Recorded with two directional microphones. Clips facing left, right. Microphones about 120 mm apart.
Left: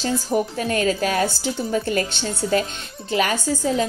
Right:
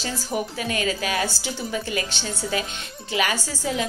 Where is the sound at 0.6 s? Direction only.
45° left (ahead or behind).